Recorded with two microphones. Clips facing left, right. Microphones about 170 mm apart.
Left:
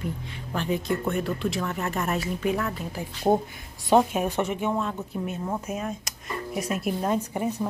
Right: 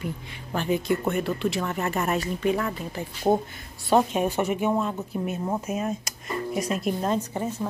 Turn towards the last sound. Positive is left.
turn(degrees=15)  # may be behind; listen again after turning